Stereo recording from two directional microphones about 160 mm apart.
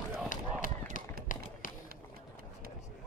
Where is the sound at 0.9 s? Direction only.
55° left (ahead or behind).